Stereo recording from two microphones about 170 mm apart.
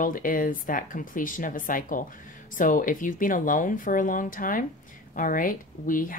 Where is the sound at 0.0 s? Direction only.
55° left (ahead or behind).